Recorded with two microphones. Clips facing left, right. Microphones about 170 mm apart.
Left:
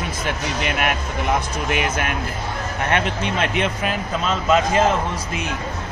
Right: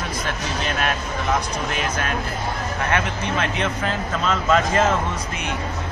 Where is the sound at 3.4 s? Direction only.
15° left (ahead or behind).